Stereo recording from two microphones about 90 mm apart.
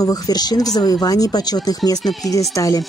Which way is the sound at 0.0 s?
45° left (ahead or behind).